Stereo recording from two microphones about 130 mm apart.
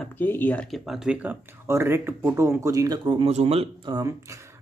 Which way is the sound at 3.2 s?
55° right (ahead or behind).